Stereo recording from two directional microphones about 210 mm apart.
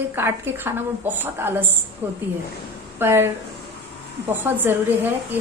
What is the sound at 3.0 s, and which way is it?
Speech, 10° right (ahead or behind).